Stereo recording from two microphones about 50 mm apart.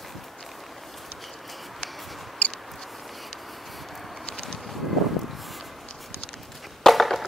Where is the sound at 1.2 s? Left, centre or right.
Centre.